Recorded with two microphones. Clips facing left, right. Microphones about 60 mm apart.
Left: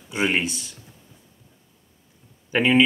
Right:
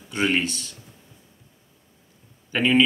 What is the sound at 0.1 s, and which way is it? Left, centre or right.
Speech, centre.